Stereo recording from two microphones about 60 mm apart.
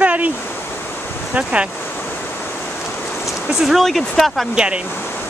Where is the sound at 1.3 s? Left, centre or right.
Centre.